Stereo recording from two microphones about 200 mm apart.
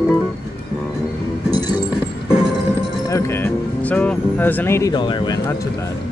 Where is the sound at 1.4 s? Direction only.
80° right.